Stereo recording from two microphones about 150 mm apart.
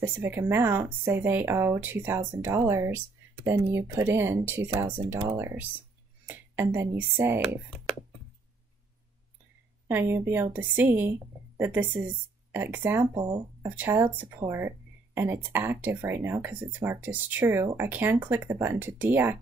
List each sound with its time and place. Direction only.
0.0 s a woman's voice: 15° right (ahead or behind)
9.8 s a woman's voice: 15° right (ahead or behind)